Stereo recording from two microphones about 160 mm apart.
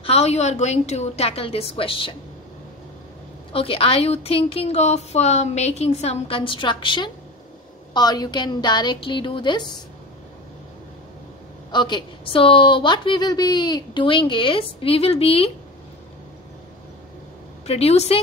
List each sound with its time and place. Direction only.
0.0 s a woman's voice: 40° left (ahead or behind)
3.5 s a woman's voice: 35° left (ahead or behind)
11.7 s a woman's voice: 30° left (ahead or behind)
17.6 s a woman's voice: 40° left (ahead or behind)